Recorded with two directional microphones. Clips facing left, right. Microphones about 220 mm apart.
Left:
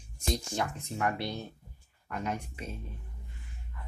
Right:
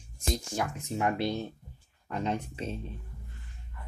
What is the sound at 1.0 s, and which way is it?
Speech, 20° right (ahead or behind).